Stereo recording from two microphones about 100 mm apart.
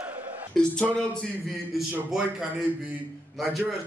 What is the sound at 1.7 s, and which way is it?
Speech, 5° right (ahead or behind).